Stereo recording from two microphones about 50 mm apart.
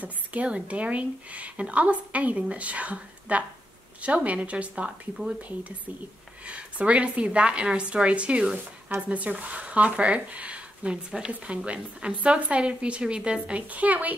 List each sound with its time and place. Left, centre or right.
0.0 s a woman's voice: right
6.4 s a woman's voice: right